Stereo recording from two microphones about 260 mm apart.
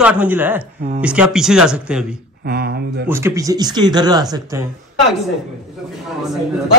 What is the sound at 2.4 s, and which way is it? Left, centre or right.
Speech, right.